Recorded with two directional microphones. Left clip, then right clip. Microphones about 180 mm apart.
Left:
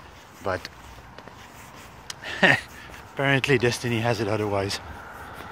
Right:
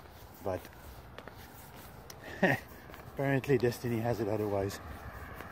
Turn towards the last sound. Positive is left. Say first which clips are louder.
# left 8 dB
turn(degrees=-15)  # may be behind; listen again after turning